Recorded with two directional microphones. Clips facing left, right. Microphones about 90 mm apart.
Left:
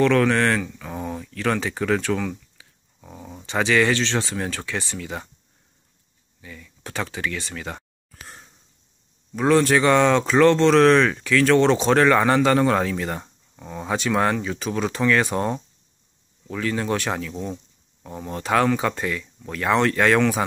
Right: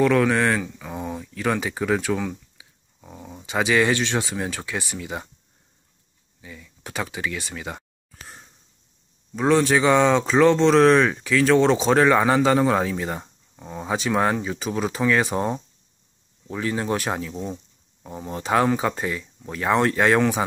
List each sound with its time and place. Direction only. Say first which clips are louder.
0.0 s a sound: even; 10° right (ahead or behind)
3.1 s speech: left 1 dB; centre (ahead or behind)
6.4 s speech: left 1 dB; 15° right (ahead or behind)
9.3 s speech: left 1 dB; centre (ahead or behind)
16.4 s speech: even; 20° right (ahead or behind)